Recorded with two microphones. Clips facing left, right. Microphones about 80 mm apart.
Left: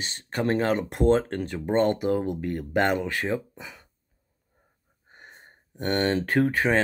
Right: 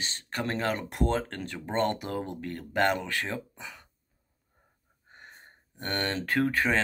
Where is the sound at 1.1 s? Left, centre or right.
Left.